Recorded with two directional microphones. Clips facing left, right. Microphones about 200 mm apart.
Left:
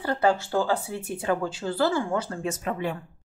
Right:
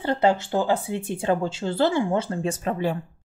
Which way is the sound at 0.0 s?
25° right (ahead or behind).